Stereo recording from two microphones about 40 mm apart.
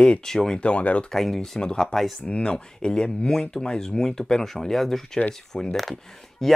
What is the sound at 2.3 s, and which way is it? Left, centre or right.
Speech, left.